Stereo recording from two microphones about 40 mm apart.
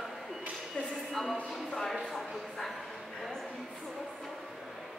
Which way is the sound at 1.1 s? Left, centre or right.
Centre.